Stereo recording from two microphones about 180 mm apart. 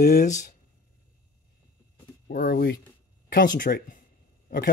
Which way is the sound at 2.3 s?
55° left (ahead or behind).